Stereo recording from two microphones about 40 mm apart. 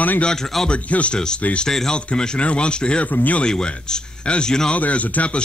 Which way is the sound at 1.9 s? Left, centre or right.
Left.